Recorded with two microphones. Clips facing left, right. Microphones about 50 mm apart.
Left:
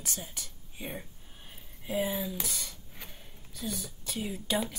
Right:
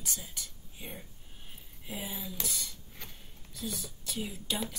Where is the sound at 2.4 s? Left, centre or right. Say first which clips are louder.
Even; left.